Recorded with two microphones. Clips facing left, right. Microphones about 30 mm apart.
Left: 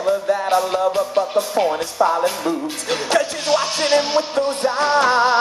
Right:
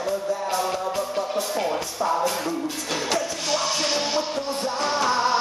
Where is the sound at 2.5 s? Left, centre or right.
Left.